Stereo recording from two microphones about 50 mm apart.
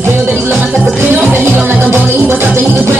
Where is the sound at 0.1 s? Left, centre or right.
Right.